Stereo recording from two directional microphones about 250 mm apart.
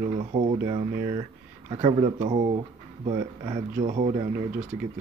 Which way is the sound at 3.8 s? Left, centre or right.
Right.